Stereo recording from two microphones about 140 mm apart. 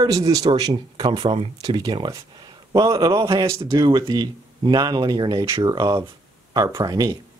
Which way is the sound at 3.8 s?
30° right (ahead or behind).